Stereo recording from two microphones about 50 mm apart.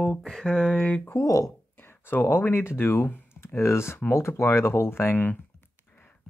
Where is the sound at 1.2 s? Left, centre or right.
Left.